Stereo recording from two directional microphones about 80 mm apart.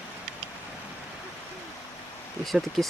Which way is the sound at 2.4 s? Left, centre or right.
Centre.